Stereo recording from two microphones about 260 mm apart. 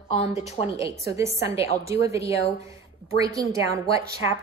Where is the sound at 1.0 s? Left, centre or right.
Centre.